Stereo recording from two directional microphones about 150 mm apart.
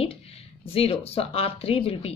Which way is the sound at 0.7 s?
40° left (ahead or behind).